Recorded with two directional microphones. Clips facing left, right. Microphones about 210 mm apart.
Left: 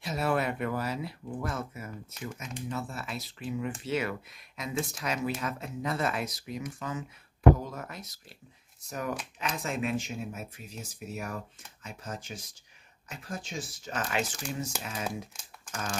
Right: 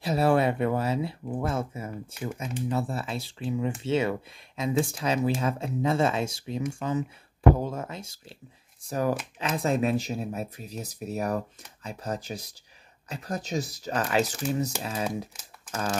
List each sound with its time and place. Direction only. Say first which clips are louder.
0.0 s speech: right 7 dB; 35° right (ahead or behind)